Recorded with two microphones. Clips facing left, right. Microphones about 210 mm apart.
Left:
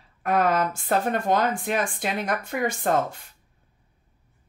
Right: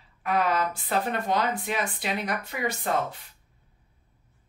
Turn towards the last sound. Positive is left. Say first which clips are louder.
# left 4 dB
turn(degrees=50)  # may be behind; listen again after turning